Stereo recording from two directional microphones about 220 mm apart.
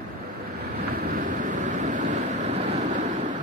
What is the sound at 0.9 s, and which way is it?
Vehicle, 40° right (ahead or behind).